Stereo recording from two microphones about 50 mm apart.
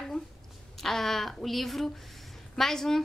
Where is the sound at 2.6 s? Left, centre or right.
Centre.